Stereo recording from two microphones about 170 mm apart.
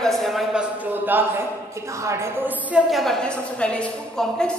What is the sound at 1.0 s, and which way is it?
A man's voice, 10° right (ahead or behind).